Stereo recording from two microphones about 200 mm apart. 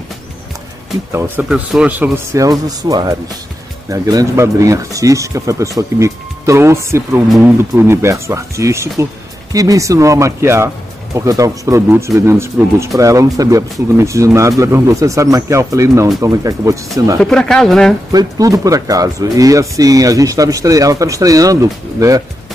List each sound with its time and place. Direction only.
1.1 s speech: 10° right (ahead or behind)
17.2 s speech: 5° left (ahead or behind)
18.1 s speech: 15° right (ahead or behind)